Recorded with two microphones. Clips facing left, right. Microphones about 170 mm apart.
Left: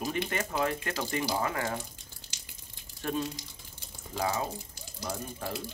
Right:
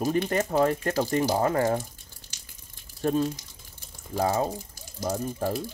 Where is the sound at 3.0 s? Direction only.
40° right (ahead or behind).